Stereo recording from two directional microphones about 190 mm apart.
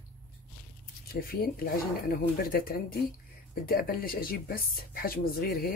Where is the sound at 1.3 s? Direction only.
50° left (ahead or behind).